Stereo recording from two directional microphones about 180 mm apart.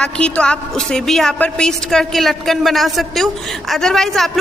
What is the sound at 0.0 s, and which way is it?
A woman's voice, 5° left (ahead or behind).